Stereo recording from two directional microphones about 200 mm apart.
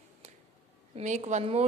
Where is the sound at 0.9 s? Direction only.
35° right (ahead or behind).